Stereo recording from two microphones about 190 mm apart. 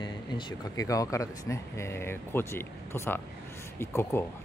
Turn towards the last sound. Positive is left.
turn(degrees=15)  # may be behind; listen again after turning